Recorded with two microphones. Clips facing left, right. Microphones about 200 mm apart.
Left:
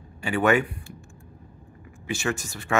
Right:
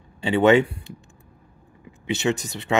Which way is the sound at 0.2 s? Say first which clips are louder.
Right 5 dB; 25° right (ahead or behind).